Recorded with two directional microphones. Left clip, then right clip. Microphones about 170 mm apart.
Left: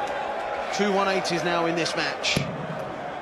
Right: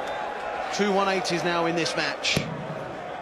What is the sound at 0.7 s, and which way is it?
Speech, 60° left (ahead or behind).